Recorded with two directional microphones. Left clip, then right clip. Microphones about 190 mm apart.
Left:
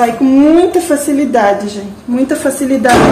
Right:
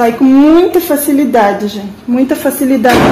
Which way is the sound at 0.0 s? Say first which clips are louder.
Right 1 dB; 35° right (ahead or behind).